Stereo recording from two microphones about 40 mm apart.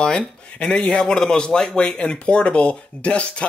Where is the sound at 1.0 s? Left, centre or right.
Centre.